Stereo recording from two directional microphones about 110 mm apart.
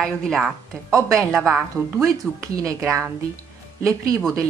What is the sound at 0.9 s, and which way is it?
A woman's voice, 30° right (ahead or behind).